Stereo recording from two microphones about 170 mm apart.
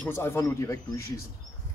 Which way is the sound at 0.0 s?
15° left (ahead or behind).